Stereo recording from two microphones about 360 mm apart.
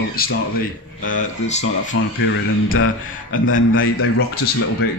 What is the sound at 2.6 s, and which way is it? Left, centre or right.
A man's voice, left.